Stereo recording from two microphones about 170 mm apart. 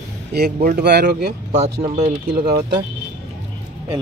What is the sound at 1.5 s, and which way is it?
Speech, 45° right (ahead or behind).